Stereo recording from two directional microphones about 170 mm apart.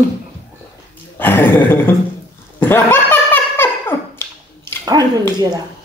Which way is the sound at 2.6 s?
10° left (ahead or behind).